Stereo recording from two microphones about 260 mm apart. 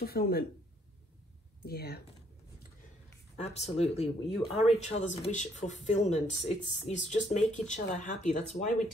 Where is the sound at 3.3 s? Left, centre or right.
Left.